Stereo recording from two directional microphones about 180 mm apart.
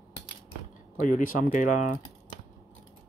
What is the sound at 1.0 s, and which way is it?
Speech, 50° left (ahead or behind).